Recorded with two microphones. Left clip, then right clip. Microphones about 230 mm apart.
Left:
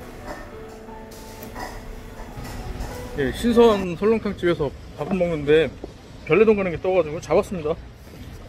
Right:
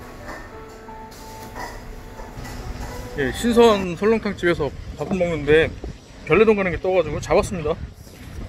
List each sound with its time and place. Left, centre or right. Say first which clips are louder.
3.2 s speech: right 1 dB; centre